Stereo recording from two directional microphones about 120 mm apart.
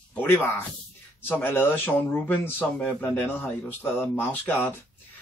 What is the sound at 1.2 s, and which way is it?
Speech, 15° left (ahead or behind).